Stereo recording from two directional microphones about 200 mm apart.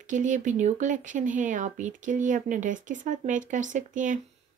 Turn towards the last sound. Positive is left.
turn(degrees=-40)  # may be behind; listen again after turning